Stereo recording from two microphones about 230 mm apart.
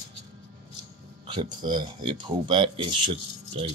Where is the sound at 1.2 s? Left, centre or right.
Centre.